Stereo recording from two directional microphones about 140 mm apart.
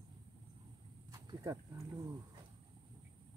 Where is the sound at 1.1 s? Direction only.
25° right (ahead or behind).